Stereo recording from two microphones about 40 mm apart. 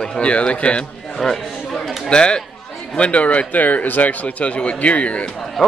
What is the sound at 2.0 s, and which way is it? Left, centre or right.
Speech, left.